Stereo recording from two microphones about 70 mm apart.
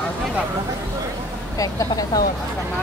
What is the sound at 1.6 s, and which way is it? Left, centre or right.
Speech, left.